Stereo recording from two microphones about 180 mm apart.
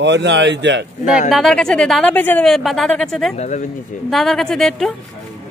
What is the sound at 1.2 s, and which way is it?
A woman's voice, centre (ahead or behind).